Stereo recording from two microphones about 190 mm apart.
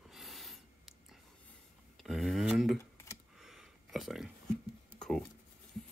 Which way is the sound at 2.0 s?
Centre (ahead or behind).